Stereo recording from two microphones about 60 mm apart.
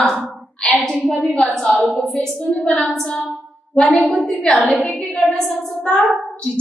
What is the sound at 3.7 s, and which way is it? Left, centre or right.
Speech, left.